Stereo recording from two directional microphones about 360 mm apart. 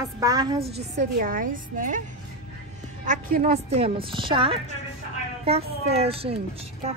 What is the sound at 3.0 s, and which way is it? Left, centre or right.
A woman's voice, right.